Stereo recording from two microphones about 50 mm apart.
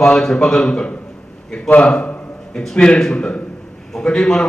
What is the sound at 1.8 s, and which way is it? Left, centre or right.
A man's voice, left.